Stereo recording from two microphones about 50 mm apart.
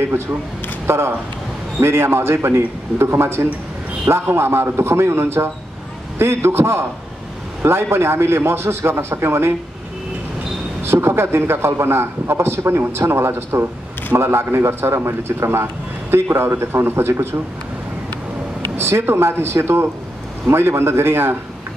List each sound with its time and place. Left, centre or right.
0.8 s a man's voice: right
10.8 s a man's voice: right
18.8 s a man's voice: right